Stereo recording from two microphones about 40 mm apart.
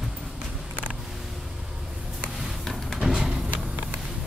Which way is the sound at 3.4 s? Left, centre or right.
Right.